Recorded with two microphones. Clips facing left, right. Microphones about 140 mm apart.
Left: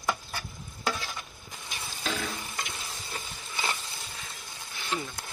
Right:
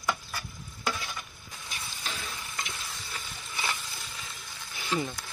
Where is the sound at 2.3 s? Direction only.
25° left (ahead or behind).